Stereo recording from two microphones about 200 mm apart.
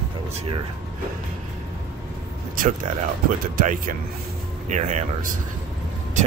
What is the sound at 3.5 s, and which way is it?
Speech, 45° right (ahead or behind).